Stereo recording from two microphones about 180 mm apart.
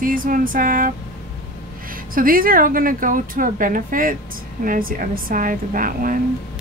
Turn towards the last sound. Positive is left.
turn(degrees=-50)  # may be behind; listen again after turning